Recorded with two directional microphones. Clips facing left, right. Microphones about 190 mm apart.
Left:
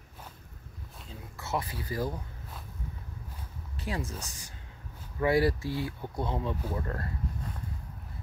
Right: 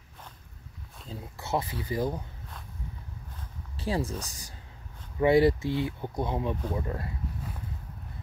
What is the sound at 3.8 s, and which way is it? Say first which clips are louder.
Speech: right 5 dB; 30° right (ahead or behind).